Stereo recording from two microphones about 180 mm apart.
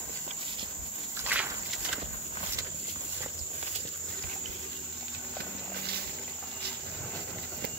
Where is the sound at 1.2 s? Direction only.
10° right (ahead or behind).